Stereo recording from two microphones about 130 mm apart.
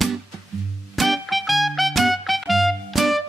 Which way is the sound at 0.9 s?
Centre (ahead or behind).